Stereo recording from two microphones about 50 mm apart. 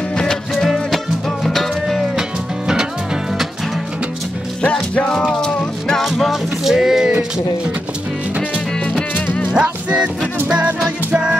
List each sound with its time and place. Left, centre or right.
0.1 s music: centre
4.6 s music: left
5.4 s music: centre
6.0 s music: centre
6.7 s a sound: centre
9.1 s music: left
9.5 s music: centre